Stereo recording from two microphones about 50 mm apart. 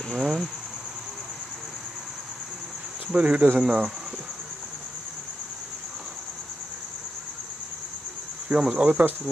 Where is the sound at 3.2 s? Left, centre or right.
Right.